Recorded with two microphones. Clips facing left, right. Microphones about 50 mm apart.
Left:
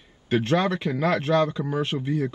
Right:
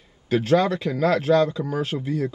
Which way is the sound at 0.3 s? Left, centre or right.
Left.